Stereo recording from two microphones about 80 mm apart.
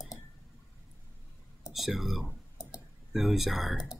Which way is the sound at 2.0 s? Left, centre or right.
Centre.